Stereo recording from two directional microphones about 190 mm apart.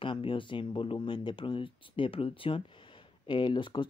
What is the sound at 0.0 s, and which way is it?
Speech, 25° left (ahead or behind).